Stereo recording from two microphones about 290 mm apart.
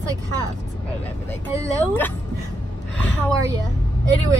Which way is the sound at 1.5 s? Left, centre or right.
Centre.